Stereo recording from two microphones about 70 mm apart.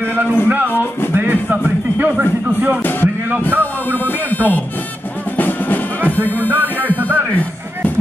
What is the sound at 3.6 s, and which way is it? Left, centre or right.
Speech, left.